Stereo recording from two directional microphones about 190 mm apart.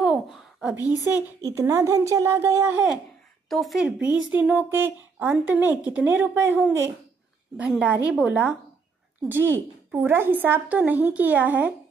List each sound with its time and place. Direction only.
0.0 s a sound: centre (ahead or behind)
0.8 s speech: 15° right (ahead or behind)
3.4 s speech: centre (ahead or behind)